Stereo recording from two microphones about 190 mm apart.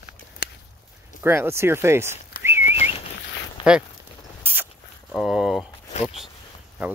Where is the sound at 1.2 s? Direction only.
10° right (ahead or behind).